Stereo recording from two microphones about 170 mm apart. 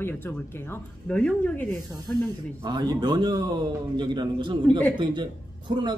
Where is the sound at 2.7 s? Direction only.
25° right (ahead or behind).